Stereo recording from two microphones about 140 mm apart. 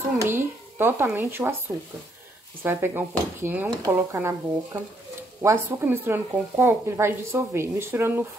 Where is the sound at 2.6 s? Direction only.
15° right (ahead or behind).